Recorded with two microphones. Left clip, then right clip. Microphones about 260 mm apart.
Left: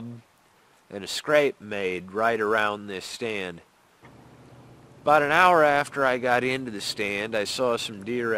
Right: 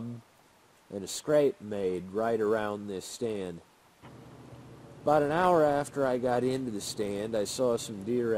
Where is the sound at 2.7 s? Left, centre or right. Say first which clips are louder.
Left 3 dB; left.